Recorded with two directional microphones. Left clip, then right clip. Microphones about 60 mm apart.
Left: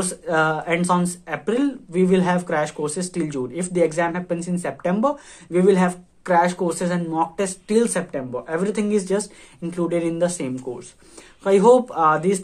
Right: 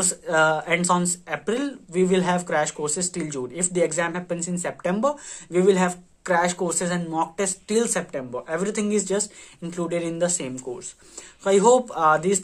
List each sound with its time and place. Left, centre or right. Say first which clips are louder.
0.0 s speech: even; right
5.7 s speech: left 2 dB; centre
6.2 s speech: left 4 dB; right
6.6 s speech: left 2 dB; right
9.9 s speech: left 2 dB; centre